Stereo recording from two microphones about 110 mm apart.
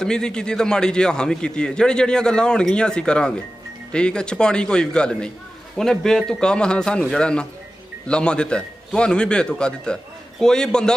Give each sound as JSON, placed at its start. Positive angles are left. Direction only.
{"t": 0.0, "sound": "a man's voice", "side_deg": 5}